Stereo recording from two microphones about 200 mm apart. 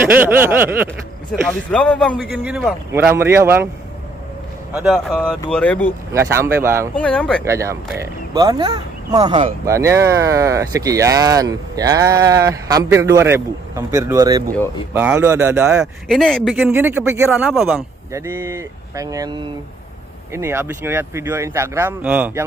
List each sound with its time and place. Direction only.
0.0 s speech: 10° right (ahead or behind)
1.5 s speech: 5° left (ahead or behind); by 3.6 s 10° right (ahead or behind)
4.7 s speech: centre (ahead or behind)
6.1 s speech: 15° right (ahead or behind)
7.0 s speech: 5° left (ahead or behind)
7.4 s speech: 15° right (ahead or behind)
17.5 s speech: centre (ahead or behind)
18.1 s speech: 10° right (ahead or behind)